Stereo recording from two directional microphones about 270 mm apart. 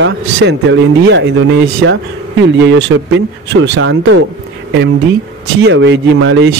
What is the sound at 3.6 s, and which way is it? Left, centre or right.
Speech, right.